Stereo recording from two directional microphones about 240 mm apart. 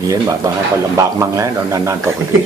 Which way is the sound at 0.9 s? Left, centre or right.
Centre.